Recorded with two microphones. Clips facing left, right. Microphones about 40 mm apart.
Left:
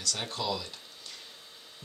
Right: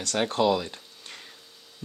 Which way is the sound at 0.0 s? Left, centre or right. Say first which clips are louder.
Right 10 dB; right.